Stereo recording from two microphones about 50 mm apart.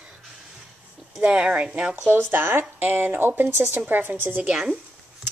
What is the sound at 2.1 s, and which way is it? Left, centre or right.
A woman's voice, right.